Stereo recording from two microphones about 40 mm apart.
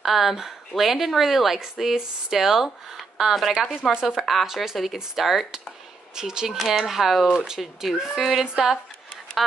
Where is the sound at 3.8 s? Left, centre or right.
Centre.